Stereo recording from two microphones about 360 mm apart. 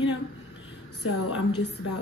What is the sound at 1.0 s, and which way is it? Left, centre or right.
Speech, left.